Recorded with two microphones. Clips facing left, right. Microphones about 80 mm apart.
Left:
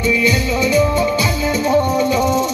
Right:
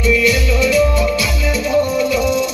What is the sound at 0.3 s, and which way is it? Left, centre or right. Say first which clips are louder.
Music: right 1 dB; left.